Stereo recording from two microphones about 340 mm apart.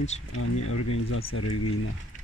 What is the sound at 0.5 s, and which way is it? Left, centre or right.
Speech, left.